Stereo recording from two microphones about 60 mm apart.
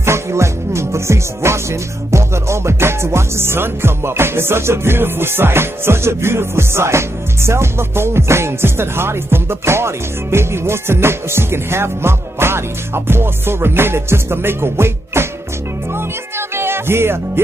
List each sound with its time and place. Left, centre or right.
0.0 s music: right